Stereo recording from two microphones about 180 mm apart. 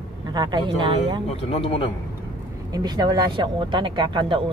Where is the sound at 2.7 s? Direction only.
20° right (ahead or behind).